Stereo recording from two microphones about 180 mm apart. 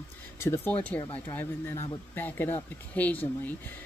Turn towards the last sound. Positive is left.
turn(degrees=10)  # may be behind; listen again after turning